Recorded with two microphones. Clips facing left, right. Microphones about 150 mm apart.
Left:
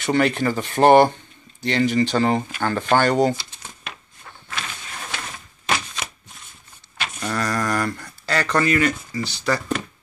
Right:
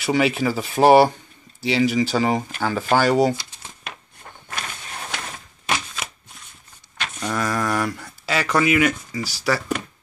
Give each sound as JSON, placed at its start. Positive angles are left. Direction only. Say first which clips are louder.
{"t": 0.0, "sound": "speech", "louder": "even", "side_deg": -5}
{"t": 4.2, "sound": "a sound", "louder": "even", "side_deg": -45}
{"t": 7.2, "sound": "speech", "louder": "even", "side_deg": -10}